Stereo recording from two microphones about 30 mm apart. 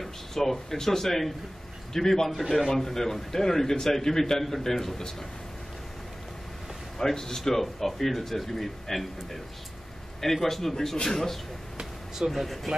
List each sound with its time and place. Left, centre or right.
0.0 s a man's voice: centre
7.0 s a man's voice: centre